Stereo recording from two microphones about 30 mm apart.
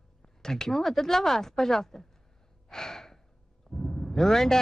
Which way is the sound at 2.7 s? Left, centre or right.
Centre.